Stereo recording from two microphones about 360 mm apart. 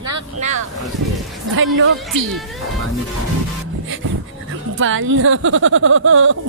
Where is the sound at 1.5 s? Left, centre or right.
Right.